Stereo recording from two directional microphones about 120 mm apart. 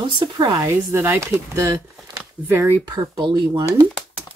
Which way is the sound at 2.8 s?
30° right (ahead or behind).